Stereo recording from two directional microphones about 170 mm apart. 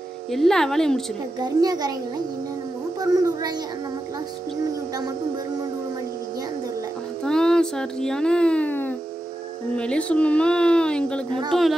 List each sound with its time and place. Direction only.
0.3 s speech: centre (ahead or behind)
1.4 s a child's voice: 25° right (ahead or behind)
7.2 s speech: 5° left (ahead or behind)